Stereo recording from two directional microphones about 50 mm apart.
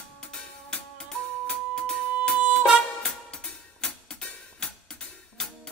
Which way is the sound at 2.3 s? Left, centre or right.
Centre.